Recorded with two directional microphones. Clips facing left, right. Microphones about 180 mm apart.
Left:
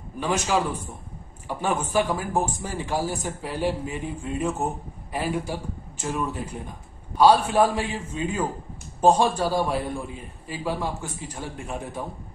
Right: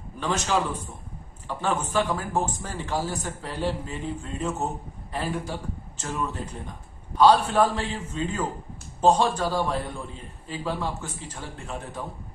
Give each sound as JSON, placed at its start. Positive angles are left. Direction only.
{"t": 0.2, "sound": "a man's voice", "side_deg": 10}